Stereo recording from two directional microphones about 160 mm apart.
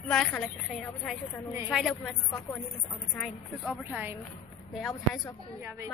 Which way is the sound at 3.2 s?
5° right (ahead or behind).